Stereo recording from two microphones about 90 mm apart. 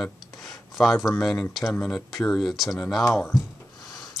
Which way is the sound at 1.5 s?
Centre (ahead or behind).